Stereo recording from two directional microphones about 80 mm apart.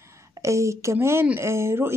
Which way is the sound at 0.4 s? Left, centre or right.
Right.